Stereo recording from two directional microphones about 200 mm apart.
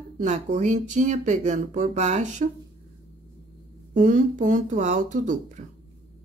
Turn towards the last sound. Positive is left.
turn(degrees=-40)  # may be behind; listen again after turning